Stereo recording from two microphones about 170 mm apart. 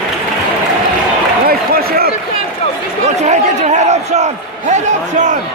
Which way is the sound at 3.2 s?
45° right (ahead or behind).